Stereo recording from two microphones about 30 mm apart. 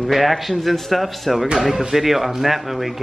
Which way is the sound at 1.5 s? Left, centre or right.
Centre.